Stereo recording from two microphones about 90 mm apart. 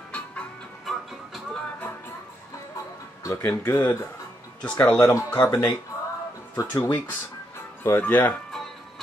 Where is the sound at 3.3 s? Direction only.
35° left (ahead or behind).